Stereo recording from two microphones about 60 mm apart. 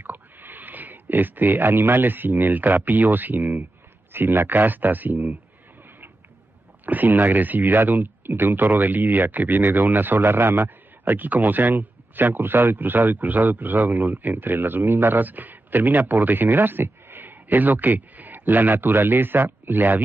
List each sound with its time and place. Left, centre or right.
0.0 s speech: right
6.9 s speech: right